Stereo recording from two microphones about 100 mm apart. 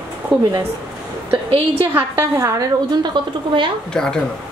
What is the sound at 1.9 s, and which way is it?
Speech, 25° right (ahead or behind).